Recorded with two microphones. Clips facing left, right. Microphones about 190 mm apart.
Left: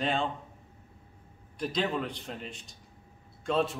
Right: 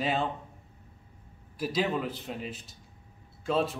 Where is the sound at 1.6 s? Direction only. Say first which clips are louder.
Right 1 dB; 5° right (ahead or behind).